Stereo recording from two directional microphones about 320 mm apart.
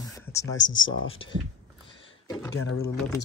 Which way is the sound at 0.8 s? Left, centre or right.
Left.